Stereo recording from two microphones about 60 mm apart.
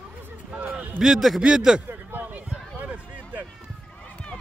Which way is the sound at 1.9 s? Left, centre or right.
Right.